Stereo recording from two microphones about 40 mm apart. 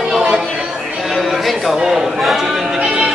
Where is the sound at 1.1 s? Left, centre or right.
Centre.